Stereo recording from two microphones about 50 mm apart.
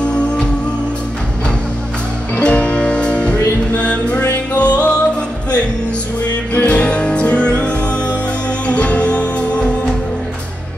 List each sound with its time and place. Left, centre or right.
0.0 s music: centre
2.4 s music: left
6.6 s music: left